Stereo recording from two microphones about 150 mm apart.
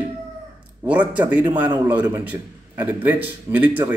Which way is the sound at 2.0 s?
25° right (ahead or behind).